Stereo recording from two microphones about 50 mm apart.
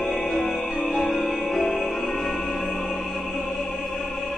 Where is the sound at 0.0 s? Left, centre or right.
Centre.